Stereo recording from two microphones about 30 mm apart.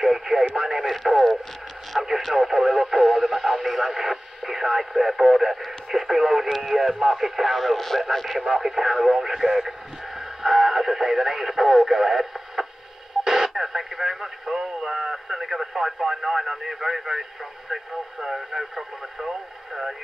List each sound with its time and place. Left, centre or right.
0.0 s radio: centre
0.6 s speech: centre
1.0 s radio: centre
2.0 s speech: centre
8.1 s speech: centre
8.5 s speech: centre